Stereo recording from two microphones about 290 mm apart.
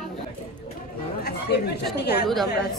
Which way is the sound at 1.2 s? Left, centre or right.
Left.